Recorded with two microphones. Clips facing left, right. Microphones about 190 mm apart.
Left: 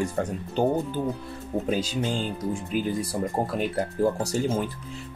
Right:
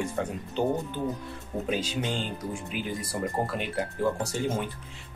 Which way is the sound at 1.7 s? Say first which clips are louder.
Left 2 dB; 35° left (ahead or behind).